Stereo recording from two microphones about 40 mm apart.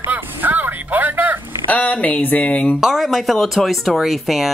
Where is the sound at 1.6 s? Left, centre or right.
Left.